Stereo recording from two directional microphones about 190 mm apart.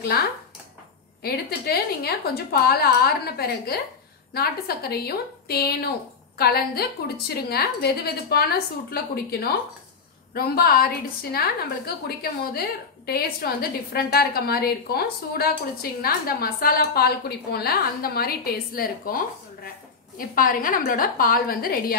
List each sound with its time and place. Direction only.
0.1 s a woman's voice: 55° left (ahead or behind)